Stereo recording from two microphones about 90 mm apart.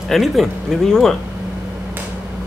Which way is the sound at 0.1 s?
Centre (ahead or behind).